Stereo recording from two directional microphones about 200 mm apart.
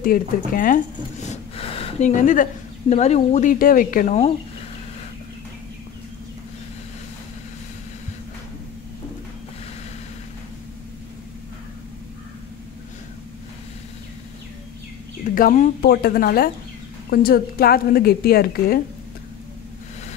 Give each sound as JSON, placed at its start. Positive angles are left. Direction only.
{"t": 0.0, "sound": "speech", "side_deg": 45}
{"t": 15.3, "sound": "speech", "side_deg": 40}
{"t": 15.8, "sound": "a woman's voice", "side_deg": 50}